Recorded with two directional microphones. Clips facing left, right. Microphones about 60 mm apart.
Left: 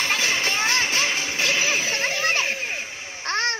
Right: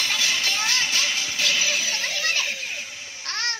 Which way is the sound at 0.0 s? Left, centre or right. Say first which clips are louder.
Left 3 dB; left.